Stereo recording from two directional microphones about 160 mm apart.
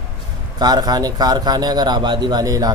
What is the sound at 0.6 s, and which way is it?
A man's voice, 25° right (ahead or behind).